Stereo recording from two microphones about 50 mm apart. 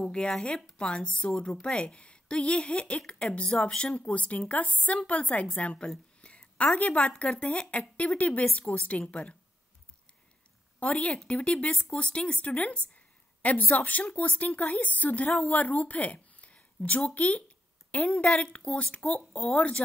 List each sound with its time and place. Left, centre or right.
0.0 s a woman's voice: centre
10.8 s a woman's voice: left